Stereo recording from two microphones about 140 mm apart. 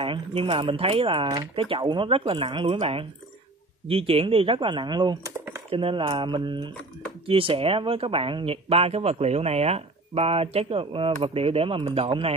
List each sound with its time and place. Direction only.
0.0 s speech: 40° right (ahead or behind)